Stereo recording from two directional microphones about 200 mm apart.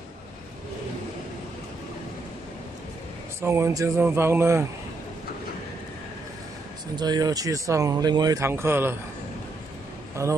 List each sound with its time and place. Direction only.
3.4 s speech: 15° right (ahead or behind)
7.0 s speech: 20° right (ahead or behind)
10.2 s speech: 15° right (ahead or behind)